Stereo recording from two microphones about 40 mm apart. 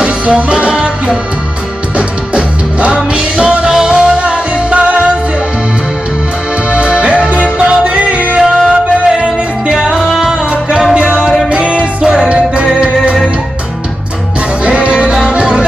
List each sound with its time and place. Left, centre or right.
0.0 s music: right
6.7 s music: right
8.4 s music: centre
14.6 s music: right